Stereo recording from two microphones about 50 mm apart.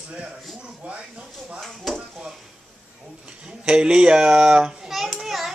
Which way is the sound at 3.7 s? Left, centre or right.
Centre.